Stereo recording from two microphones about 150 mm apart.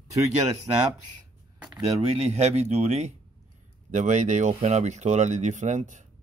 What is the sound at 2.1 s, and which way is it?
Speech, 45° right (ahead or behind).